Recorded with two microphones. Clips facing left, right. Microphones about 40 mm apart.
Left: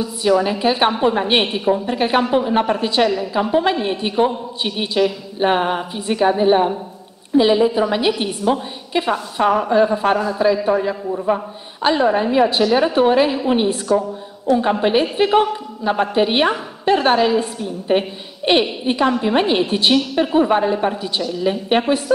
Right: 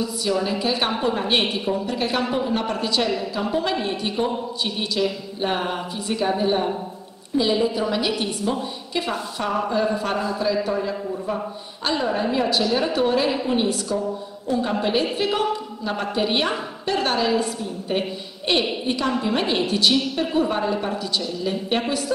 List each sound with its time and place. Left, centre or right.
0.0 s a man's voice: left